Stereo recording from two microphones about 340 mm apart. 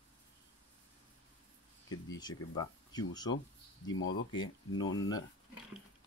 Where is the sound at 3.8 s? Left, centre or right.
Left.